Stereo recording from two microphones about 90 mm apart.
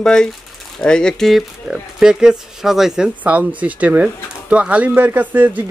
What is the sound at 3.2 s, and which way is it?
Speech, 15° right (ahead or behind).